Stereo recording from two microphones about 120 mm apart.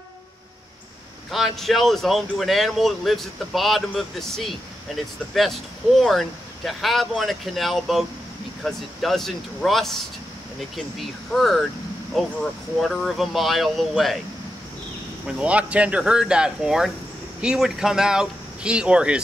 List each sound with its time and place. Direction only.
1.3 s speech: centre (ahead or behind)
15.3 s speech: 10° right (ahead or behind)